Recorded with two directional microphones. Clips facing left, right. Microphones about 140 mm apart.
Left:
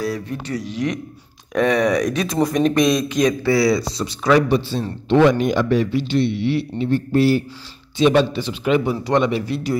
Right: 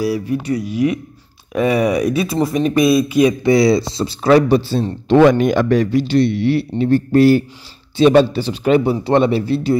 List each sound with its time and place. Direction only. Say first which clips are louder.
0.0 s speech: right 6 dB; 10° right (ahead or behind)
3.5 s a man's voice: right 4 dB; 25° right (ahead or behind)
5.1 s a man's voice: right 4 dB; 50° right (ahead or behind); by 9.8 s 30° right (ahead or behind)